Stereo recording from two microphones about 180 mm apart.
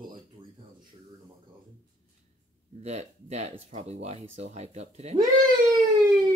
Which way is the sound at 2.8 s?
40° right (ahead or behind).